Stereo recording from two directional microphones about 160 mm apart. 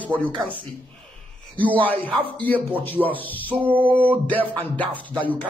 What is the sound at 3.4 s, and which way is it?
Music, 10° right (ahead or behind).